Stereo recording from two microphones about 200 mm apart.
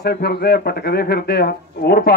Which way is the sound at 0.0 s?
50° left (ahead or behind).